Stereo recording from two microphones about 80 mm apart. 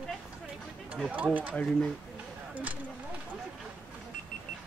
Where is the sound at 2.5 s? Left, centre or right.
Centre.